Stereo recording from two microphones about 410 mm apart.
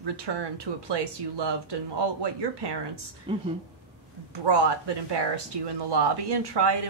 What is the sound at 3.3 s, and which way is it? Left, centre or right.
Speech, centre.